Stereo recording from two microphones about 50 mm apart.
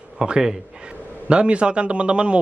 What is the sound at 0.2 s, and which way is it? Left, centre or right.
A man's voice, centre.